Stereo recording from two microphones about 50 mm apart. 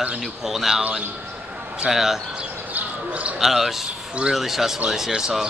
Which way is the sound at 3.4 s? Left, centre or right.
Centre.